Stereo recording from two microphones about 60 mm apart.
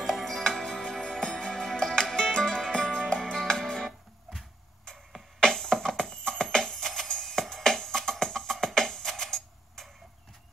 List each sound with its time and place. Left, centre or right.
0.0 s music: centre
4.3 s a sound: centre
5.4 s music: centre